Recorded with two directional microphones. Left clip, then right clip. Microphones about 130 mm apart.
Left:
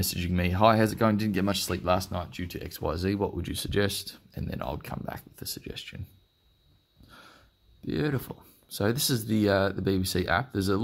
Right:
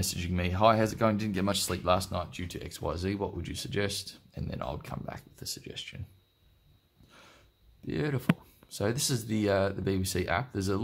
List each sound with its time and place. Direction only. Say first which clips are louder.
0.0 s speech: left 3 dB; 30° left (ahead or behind)
7.1 s speech: left 4 dB; 25° left (ahead or behind)